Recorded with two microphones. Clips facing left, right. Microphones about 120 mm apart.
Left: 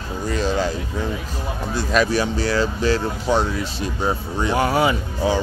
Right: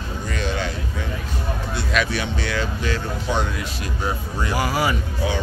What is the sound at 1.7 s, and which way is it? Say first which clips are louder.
Speech: left 5 dB; 40° left (ahead or behind).